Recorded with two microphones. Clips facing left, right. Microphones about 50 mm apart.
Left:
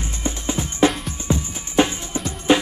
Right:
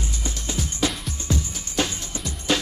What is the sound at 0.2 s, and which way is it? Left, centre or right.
Music, left.